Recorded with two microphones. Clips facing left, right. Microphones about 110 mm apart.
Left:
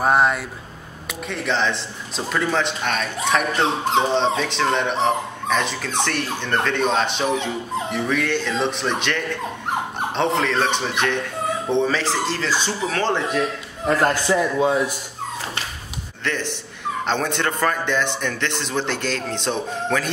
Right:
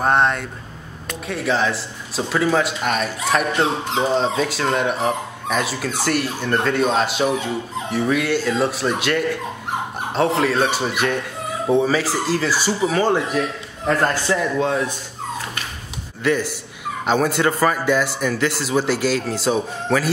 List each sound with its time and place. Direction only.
0.0 s a man's voice: 5° left (ahead or behind)
13.8 s a man's voice: 20° left (ahead or behind)
16.3 s speech: 10° right (ahead or behind)